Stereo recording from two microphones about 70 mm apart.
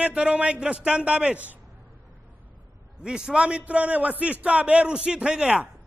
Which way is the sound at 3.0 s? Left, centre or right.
Centre.